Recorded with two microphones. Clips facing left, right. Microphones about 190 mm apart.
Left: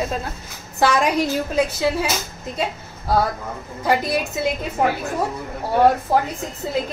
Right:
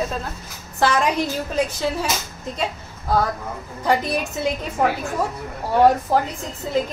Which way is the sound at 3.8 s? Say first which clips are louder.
Left 1 dB; 5° left (ahead or behind).